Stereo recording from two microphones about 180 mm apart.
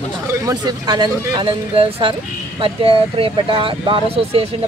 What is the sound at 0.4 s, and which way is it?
Speech, 20° right (ahead or behind).